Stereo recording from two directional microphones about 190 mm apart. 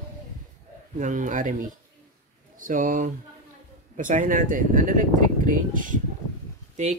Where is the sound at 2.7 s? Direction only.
45° right (ahead or behind).